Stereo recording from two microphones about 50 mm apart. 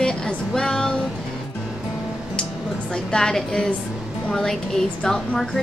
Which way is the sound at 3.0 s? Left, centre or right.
Centre.